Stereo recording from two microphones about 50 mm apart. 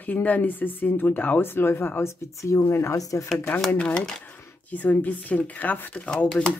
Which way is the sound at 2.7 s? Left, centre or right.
Left.